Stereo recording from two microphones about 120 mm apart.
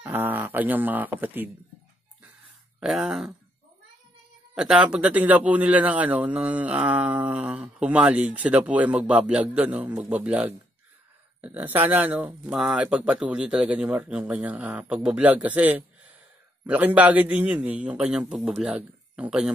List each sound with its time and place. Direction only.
0.0 s speech: 15° right (ahead or behind)
2.8 s speech: 5° right (ahead or behind)
4.6 s speech: 10° right (ahead or behind)